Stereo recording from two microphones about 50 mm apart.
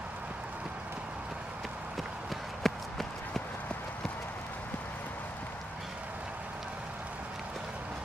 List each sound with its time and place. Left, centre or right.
2.6 s run: centre